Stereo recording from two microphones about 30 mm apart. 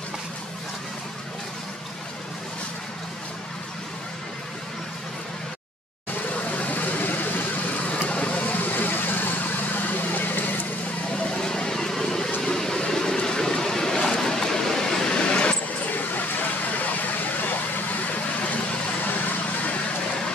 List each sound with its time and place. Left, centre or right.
6.3 s vehicle: left
8.1 s vehicle: left
8.5 s vehicle: left
11.2 s a sound: left
12.4 s vehicle: centre
15.2 s vehicle: left
15.9 s vehicle: left
18.0 s vehicle: left